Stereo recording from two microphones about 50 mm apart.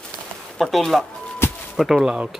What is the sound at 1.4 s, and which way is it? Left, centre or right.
Music, left.